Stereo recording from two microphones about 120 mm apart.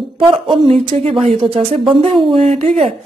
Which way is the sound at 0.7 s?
60° right (ahead or behind).